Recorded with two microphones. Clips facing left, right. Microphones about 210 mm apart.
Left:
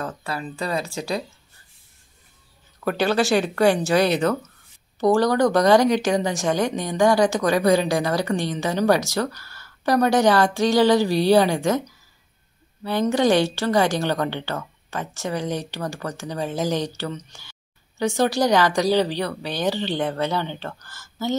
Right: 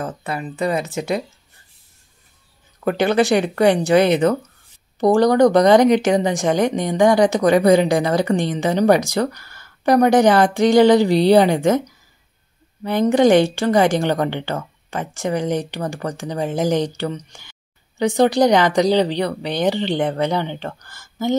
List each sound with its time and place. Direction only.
0.0 s speech: 20° right (ahead or behind)
2.8 s speech: 20° right (ahead or behind)
13.1 s speech: 15° right (ahead or behind)